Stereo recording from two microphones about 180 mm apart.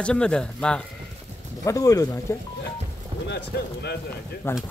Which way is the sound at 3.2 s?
70° left (ahead or behind).